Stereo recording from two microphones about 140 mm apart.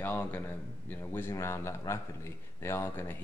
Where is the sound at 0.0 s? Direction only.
15° left (ahead or behind).